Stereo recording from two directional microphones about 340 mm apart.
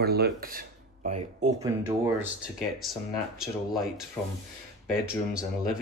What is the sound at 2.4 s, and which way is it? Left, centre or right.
Speech, centre.